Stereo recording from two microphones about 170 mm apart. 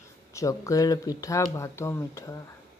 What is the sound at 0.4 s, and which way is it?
Speech, 20° left (ahead or behind).